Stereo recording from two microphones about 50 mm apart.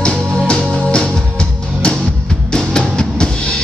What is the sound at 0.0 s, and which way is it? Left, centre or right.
Music, centre.